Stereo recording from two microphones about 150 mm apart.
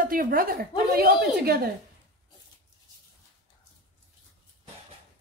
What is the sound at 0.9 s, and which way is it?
Speech, 90° right.